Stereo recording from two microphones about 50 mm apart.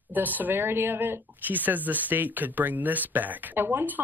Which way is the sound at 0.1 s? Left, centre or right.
Right.